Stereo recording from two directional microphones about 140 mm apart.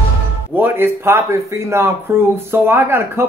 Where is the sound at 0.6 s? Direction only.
15° right (ahead or behind).